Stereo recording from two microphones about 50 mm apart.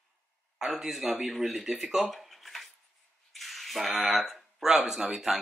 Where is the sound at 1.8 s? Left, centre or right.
Centre.